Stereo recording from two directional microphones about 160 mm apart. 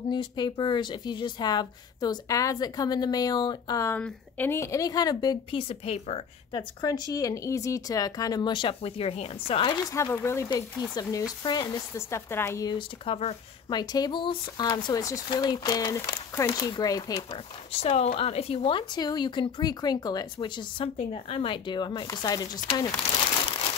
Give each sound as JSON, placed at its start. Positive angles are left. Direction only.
{"t": 0.1, "sound": "speech", "side_deg": 30}
{"t": 6.8, "sound": "speech", "side_deg": 25}
{"t": 9.8, "sound": "speech", "side_deg": 20}
{"t": 12.1, "sound": "speech", "side_deg": 15}
{"t": 12.7, "sound": "speech", "side_deg": 35}
{"t": 13.7, "sound": "speech", "side_deg": 25}
{"t": 17.1, "sound": "speech", "side_deg": 40}